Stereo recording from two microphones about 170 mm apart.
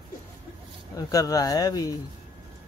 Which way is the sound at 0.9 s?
20° left (ahead or behind).